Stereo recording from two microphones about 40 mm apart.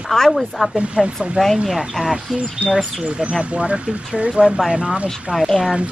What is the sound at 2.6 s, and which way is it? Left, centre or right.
Speech, right.